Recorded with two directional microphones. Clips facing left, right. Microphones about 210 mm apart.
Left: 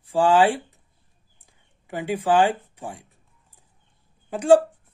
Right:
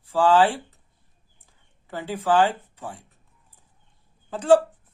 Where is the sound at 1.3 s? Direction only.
15° left (ahead or behind).